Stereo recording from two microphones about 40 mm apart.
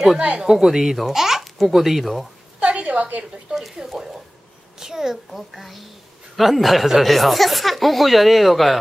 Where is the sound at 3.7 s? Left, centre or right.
Centre.